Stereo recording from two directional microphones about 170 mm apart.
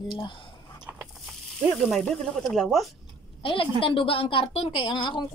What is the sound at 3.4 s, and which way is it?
A woman's voice, 30° left (ahead or behind).